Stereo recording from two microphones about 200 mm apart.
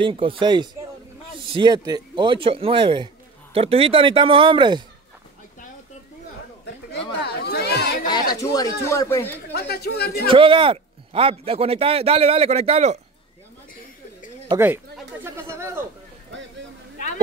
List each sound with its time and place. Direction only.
0.0 s a man's voice: 25° right (ahead or behind)
7.2 s a sound: 55° left (ahead or behind)
8.1 s speech: 20° left (ahead or behind)
9.5 s speech: 50° left (ahead or behind)
10.2 s a man's voice: 25° right (ahead or behind)
15.2 s a sound: 15° right (ahead or behind)